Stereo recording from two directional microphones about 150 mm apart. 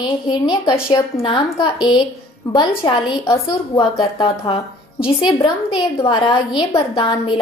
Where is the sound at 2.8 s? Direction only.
30° left (ahead or behind).